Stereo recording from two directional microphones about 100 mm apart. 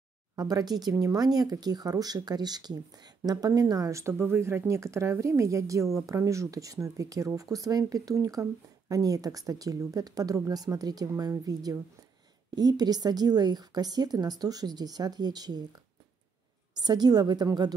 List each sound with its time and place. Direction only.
0.4 s speech: 40° right (ahead or behind)
16.7 s a woman's voice: 45° right (ahead or behind)